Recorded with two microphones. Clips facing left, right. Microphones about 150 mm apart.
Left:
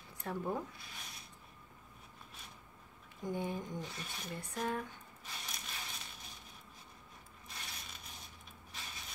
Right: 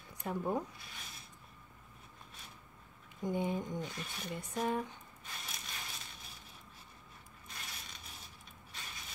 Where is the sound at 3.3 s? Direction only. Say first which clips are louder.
Right 3 dB; 20° right (ahead or behind).